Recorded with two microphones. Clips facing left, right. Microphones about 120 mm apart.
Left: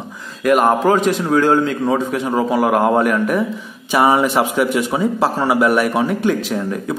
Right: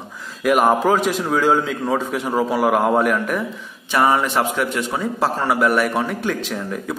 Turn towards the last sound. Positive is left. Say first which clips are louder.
# left 6 dB
turn(degrees=5)  # may be behind; listen again after turning